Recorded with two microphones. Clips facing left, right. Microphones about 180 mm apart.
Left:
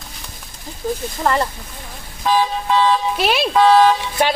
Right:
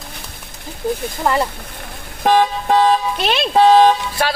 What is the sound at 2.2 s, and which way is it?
Vehicle, 55° right (ahead or behind).